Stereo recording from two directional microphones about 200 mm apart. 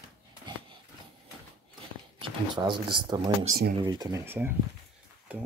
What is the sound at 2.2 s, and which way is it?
Speech, 25° right (ahead or behind).